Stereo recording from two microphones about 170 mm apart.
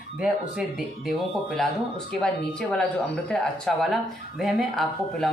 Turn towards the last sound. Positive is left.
turn(degrees=0)  # may be behind; listen again after turning